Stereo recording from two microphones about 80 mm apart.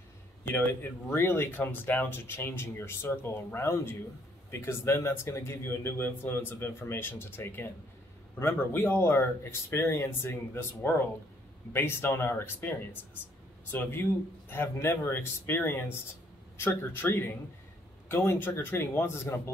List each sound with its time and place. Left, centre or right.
1.1 s speech: left
8.7 s speech: left